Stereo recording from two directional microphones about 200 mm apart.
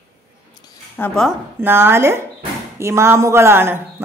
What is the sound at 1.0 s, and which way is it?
Speech, centre (ahead or behind).